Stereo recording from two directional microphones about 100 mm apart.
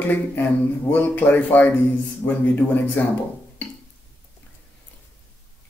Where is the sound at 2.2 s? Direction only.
50° left (ahead or behind).